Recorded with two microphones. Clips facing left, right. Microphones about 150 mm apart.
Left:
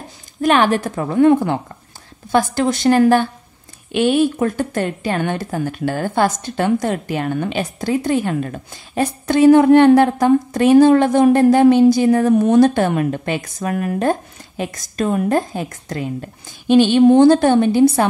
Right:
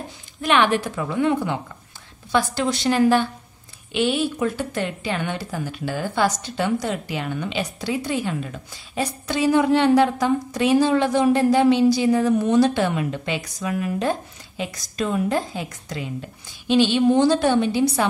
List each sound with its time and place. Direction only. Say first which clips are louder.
0.4 s a woman's voice: left 4 dB; 45° left (ahead or behind)